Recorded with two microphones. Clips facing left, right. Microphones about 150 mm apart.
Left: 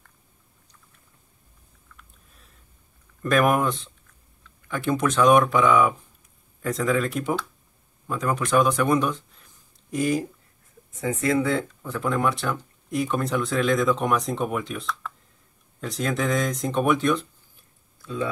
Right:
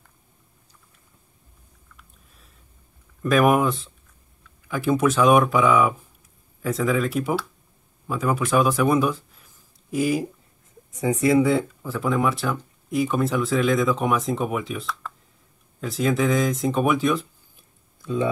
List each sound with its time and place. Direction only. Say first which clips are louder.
2.0 s a sound: even; centre (ahead or behind)
3.2 s speech: right 2 dB; centre (ahead or behind)
18.0 s speech: right 5 dB; 20° right (ahead or behind)